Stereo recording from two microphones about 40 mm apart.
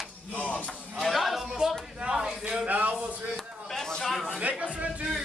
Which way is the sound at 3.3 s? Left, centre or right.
Centre.